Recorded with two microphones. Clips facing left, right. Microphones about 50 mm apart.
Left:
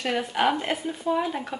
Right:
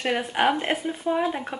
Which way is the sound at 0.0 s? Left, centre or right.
Centre.